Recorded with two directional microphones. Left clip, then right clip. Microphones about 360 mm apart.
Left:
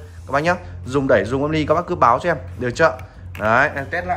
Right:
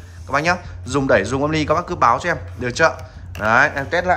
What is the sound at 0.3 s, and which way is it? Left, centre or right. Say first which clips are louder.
A man's voice: even; centre.